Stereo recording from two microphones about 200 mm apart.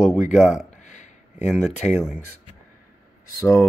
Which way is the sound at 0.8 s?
35° left (ahead or behind).